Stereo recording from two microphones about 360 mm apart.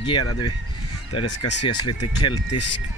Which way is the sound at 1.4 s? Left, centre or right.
Left.